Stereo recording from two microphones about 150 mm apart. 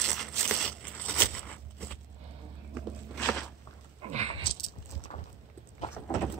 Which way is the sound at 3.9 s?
45° right (ahead or behind).